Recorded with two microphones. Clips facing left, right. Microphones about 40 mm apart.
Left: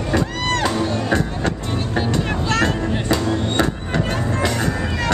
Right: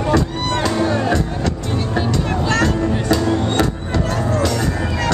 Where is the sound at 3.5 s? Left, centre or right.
Left.